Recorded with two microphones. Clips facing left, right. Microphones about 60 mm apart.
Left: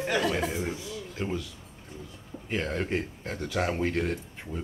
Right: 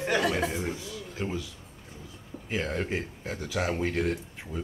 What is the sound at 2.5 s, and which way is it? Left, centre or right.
Speech, centre.